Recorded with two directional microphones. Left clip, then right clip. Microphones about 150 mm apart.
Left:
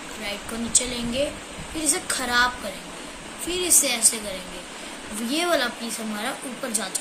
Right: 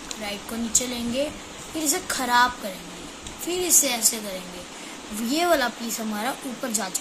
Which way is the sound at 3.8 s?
55° right (ahead or behind).